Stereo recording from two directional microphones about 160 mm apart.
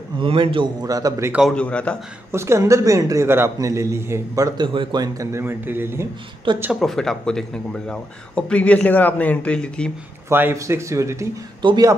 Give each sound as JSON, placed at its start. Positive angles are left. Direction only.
{"t": 0.2, "sound": "speech", "side_deg": -35}
{"t": 1.5, "sound": "a man's voice", "side_deg": 5}
{"t": 2.3, "sound": "speech", "side_deg": -15}
{"t": 6.6, "sound": "speech", "side_deg": 0}
{"t": 10.3, "sound": "speech", "side_deg": -15}